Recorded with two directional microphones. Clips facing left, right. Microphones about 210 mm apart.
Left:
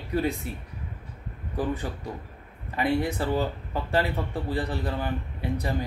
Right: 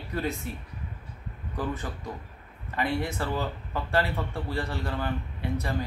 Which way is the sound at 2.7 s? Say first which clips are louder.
Left 4 dB; 15° left (ahead or behind).